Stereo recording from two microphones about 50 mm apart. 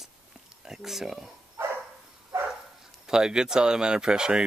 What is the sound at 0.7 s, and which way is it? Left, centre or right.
Speech, centre.